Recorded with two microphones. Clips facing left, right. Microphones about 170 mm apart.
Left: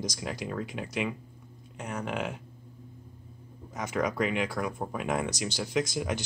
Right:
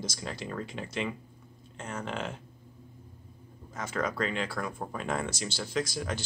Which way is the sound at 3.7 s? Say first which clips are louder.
Left 3 dB; 15° left (ahead or behind).